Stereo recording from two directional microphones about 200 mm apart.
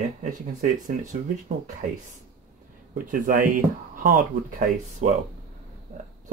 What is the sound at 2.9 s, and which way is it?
Speech, 40° right (ahead or behind).